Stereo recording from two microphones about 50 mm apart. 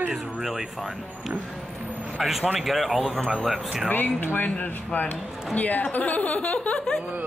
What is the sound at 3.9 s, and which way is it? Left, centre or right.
Speech, left.